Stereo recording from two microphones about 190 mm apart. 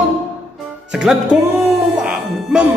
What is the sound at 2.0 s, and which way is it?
Music, 5° right (ahead or behind).